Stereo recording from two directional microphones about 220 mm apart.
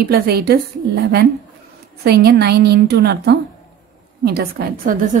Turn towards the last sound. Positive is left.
turn(degrees=-40)  # may be behind; listen again after turning